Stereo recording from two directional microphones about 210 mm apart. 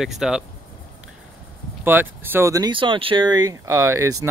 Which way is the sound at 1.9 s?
10° right (ahead or behind).